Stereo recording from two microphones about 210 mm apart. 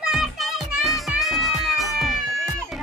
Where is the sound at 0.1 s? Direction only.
Centre (ahead or behind).